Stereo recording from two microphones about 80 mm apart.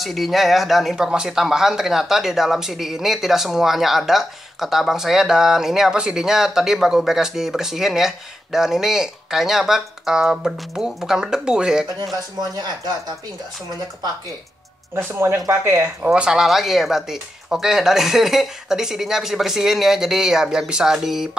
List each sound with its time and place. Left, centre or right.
0.0 s speech: centre
12.4 s speech: right
15.0 s speech: right
16.1 s speech: centre